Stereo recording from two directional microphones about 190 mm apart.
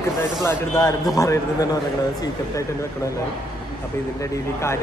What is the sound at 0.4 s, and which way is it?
A man's voice, 15° left (ahead or behind).